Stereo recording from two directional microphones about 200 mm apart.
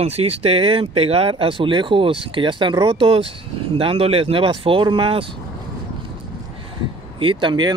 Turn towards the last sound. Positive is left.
turn(degrees=-20)  # may be behind; listen again after turning